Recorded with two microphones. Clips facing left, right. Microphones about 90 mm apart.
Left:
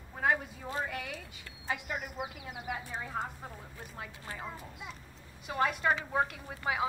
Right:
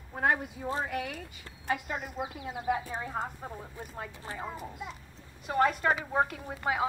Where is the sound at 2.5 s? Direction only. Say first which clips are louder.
Right 11 dB; 35° right (ahead or behind).